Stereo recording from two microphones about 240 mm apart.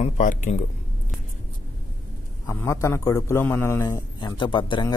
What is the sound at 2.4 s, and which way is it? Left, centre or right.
A man's voice, centre.